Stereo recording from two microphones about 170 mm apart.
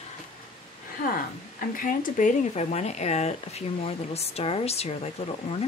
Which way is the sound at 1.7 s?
55° left (ahead or behind).